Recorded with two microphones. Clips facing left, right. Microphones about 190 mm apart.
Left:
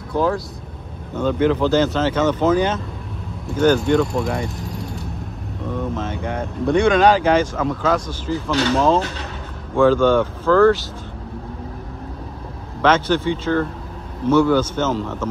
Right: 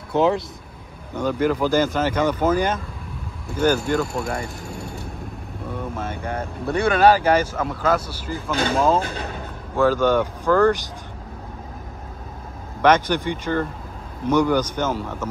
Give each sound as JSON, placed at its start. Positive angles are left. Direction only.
{"t": 0.1, "sound": "speech", "side_deg": -25}
{"t": 1.1, "sound": "speech", "side_deg": -10}
{"t": 4.6, "sound": "vehicle", "side_deg": -55}
{"t": 5.7, "sound": "speech", "side_deg": -10}
{"t": 8.3, "sound": "speech", "side_deg": -55}
{"t": 9.8, "sound": "speech", "side_deg": -10}
{"t": 12.8, "sound": "speech", "side_deg": -15}